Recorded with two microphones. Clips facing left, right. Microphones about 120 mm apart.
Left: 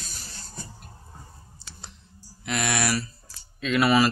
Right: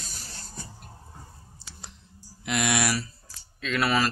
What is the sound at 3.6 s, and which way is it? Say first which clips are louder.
Speech: left 5 dB; 5° left (ahead or behind).